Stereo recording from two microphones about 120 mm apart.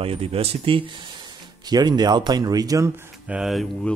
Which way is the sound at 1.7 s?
35° right (ahead or behind).